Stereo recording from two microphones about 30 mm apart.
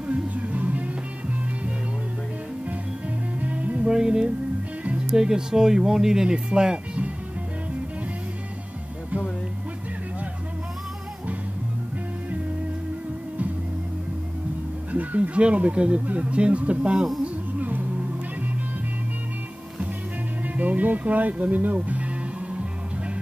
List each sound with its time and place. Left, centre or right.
0.0 s music: right
3.3 s music: right
3.8 s speech: right
14.9 s a sound: right
16.1 s speech: right
17.6 s music: right
20.4 s speech: right
21.7 s music: right